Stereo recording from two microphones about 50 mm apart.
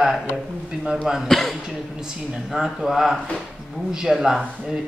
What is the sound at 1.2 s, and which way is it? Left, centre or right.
Speech, centre.